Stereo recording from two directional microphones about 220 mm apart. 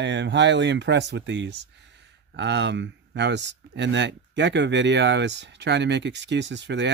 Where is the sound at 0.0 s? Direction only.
55° right (ahead or behind).